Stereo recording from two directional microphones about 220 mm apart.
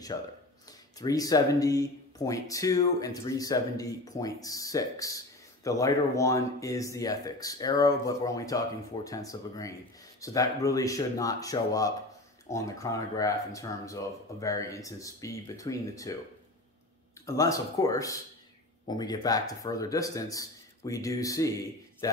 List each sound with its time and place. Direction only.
0.1 s speech: 20° left (ahead or behind)
17.4 s speech: 15° left (ahead or behind)